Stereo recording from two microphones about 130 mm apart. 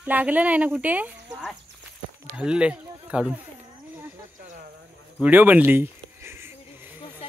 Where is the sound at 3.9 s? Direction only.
15° right (ahead or behind).